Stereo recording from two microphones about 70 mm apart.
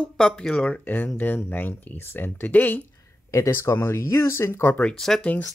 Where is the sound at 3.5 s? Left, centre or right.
Left.